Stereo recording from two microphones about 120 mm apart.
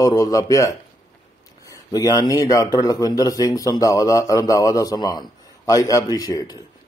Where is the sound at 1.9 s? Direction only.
30° left (ahead or behind).